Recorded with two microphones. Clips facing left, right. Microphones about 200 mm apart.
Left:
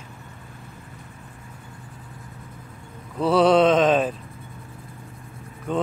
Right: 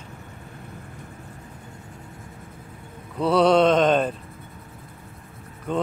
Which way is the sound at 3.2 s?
5° left (ahead or behind).